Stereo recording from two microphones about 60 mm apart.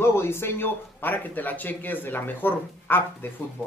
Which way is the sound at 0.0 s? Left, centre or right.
Left.